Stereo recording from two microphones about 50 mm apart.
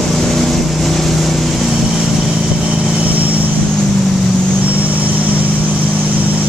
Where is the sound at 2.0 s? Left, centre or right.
Centre.